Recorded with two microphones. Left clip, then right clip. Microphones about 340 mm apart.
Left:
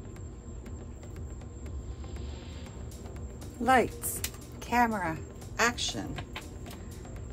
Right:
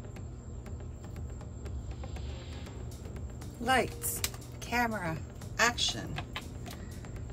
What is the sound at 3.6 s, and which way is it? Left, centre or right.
A woman's voice, centre.